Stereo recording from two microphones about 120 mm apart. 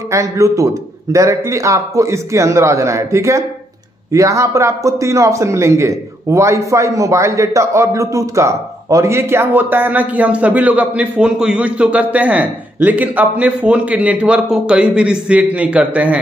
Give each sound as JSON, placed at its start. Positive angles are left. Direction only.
{"t": 0.1, "sound": "a man's voice", "side_deg": -25}